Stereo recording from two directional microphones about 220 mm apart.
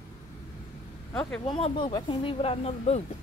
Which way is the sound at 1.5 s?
25° left (ahead or behind).